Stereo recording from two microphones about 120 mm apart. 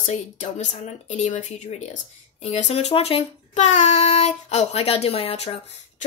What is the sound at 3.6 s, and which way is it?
Speech, 75° left (ahead or behind).